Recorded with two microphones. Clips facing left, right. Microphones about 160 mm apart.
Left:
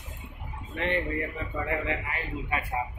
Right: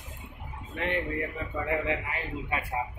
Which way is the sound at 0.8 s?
5° right (ahead or behind).